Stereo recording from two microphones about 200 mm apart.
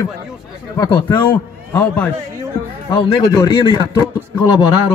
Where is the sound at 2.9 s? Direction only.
20° left (ahead or behind).